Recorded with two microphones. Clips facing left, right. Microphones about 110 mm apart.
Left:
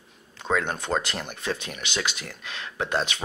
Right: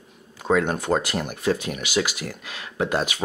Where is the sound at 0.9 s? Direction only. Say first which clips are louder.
Right 4 dB; 45° right (ahead or behind).